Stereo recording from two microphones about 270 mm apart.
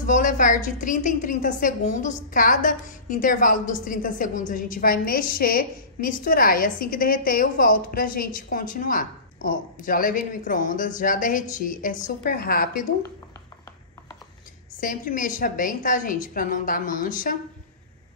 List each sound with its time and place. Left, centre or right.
0.0 s a woman's voice: left
14.8 s a woman's voice: left